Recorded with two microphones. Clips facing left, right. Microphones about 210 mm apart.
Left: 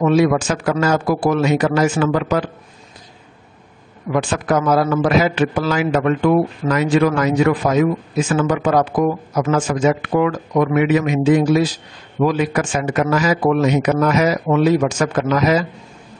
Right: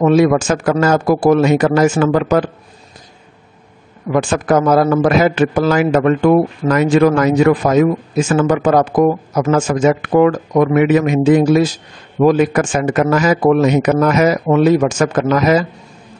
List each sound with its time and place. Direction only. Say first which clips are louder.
0.0 s a man's voice: right 3 dB; 45° right (ahead or behind)
4.1 s a man's voice: right 4 dB; 45° right (ahead or behind)